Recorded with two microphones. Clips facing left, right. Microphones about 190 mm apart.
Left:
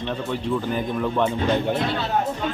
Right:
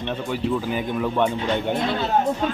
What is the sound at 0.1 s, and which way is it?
Speech, 5° right (ahead or behind).